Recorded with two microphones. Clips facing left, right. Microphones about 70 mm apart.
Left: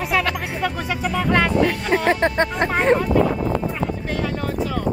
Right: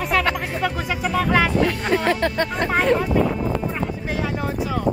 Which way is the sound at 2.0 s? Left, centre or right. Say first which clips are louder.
Left 2 dB; left.